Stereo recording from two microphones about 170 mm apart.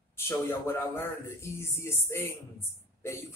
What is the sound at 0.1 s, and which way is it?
A man's voice, 15° left (ahead or behind).